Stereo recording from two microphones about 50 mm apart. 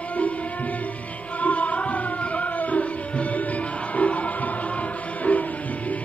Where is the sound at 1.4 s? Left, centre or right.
Left.